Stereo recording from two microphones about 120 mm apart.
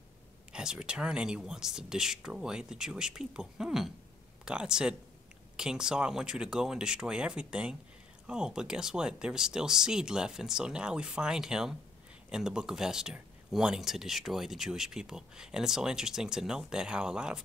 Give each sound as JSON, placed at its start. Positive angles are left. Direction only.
{"t": 0.5, "sound": "speech", "side_deg": -5}